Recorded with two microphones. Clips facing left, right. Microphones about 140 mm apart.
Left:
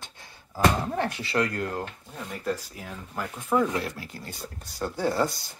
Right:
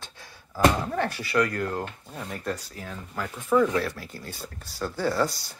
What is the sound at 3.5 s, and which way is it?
Speech, 20° left (ahead or behind).